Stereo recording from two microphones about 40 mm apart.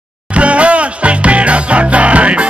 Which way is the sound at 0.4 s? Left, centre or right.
Right.